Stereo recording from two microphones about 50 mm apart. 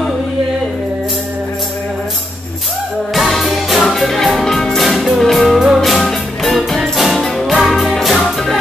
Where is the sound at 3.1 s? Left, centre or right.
Centre.